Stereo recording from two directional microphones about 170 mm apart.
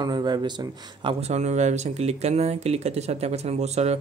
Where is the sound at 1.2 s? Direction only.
40° right (ahead or behind).